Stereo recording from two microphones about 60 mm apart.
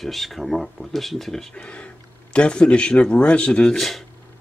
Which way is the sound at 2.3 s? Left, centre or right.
Centre.